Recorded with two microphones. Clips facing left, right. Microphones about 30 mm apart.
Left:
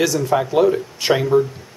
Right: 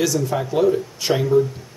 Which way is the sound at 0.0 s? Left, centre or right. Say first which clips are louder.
Left 3 dB; left.